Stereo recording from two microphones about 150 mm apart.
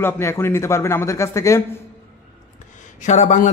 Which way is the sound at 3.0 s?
50° left (ahead or behind).